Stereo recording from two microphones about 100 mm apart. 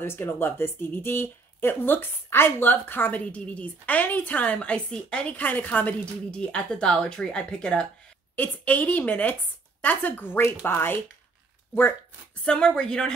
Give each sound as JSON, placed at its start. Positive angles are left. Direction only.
{"t": 0.0, "sound": "speech", "side_deg": 25}
{"t": 12.4, "sound": "speech", "side_deg": 10}